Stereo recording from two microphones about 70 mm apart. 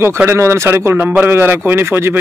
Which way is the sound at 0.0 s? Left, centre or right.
Right.